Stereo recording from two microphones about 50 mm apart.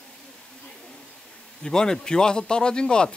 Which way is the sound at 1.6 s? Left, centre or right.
Centre.